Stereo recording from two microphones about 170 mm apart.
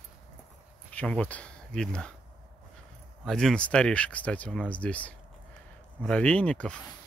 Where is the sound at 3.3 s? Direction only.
5° left (ahead or behind).